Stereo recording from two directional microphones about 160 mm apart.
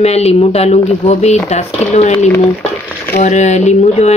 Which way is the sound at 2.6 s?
10° left (ahead or behind).